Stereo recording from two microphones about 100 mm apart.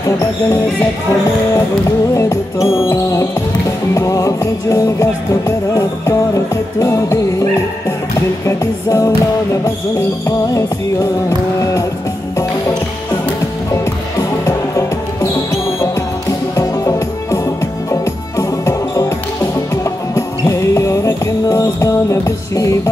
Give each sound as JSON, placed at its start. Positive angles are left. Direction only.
{"t": 1.9, "sound": "music", "side_deg": 30}
{"t": 15.5, "sound": "music", "side_deg": 30}